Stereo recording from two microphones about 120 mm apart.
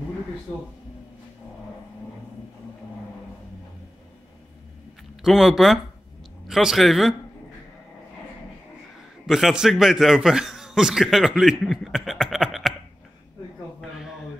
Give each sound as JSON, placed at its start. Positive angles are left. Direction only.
{"t": 5.2, "sound": "speech", "side_deg": -5}
{"t": 9.2, "sound": "a man's voice", "side_deg": -5}